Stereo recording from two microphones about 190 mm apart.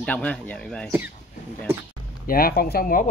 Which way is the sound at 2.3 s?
50° left (ahead or behind).